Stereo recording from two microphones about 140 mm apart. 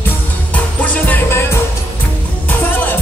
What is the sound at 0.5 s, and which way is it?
Music, 10° left (ahead or behind).